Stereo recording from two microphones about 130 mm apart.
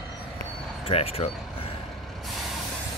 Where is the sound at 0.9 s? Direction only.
50° left (ahead or behind).